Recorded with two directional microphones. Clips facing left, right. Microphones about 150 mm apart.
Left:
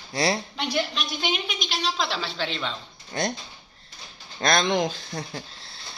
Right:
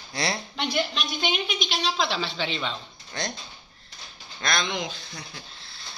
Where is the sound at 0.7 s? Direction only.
Centre (ahead or behind).